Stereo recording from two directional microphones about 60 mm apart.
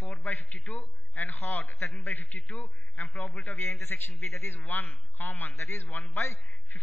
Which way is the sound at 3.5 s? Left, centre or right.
Left.